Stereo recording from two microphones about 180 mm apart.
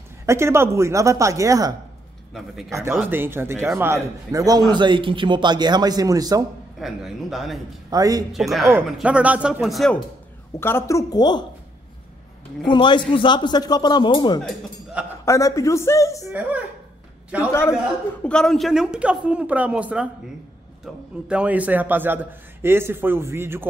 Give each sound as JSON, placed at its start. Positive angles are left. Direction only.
{"t": 0.3, "sound": "a man's voice", "side_deg": -15}
{"t": 2.3, "sound": "a woman's voice", "side_deg": 0}
{"t": 2.7, "sound": "a man's voice", "side_deg": -15}
{"t": 6.8, "sound": "a woman's voice", "side_deg": 0}
{"t": 7.9, "sound": "a man's voice", "side_deg": -20}
{"t": 8.3, "sound": "a woman's voice", "side_deg": 0}
{"t": 10.6, "sound": "a man's voice", "side_deg": 15}
{"t": 12.6, "sound": "a man's voice", "side_deg": 25}
{"t": 16.3, "sound": "a man's voice", "side_deg": -10}
{"t": 17.4, "sound": "speech", "side_deg": 15}
{"t": 17.7, "sound": "a woman's voice", "side_deg": 5}